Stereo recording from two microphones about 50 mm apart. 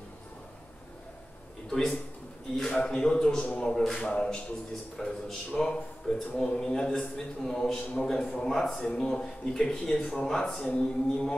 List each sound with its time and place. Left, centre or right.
1.7 s a man's voice: centre
3.7 s speech: centre